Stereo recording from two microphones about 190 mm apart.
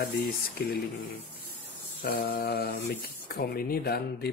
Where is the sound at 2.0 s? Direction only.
50° left (ahead or behind).